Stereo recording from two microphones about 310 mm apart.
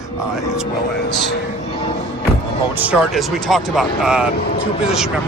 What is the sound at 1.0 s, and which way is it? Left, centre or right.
Speech, left.